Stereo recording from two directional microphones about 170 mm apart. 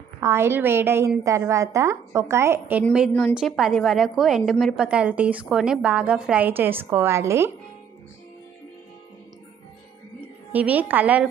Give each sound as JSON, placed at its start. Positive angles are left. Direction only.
{"t": 0.2, "sound": "a woman's voice", "side_deg": -15}
{"t": 3.1, "sound": "a woman's voice", "side_deg": 10}
{"t": 3.3, "sound": "a woman's voice", "side_deg": 0}
{"t": 10.5, "sound": "a woman's voice", "side_deg": -10}